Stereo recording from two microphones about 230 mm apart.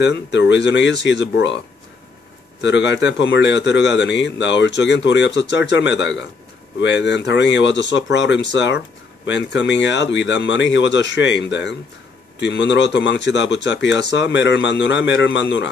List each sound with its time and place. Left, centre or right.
0.0 s a man's voice: left
2.6 s a man's voice: left